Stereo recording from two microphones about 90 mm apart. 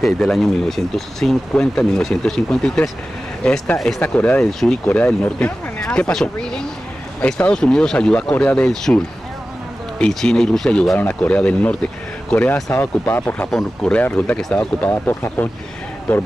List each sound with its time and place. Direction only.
0.0 s speech: centre (ahead or behind)
4.8 s speech: 20° left (ahead or behind)
12.7 s speech: 25° left (ahead or behind)
13.5 s speech: 5° left (ahead or behind)
13.9 s speech: 15° left (ahead or behind)
14.9 s speech: 25° left (ahead or behind)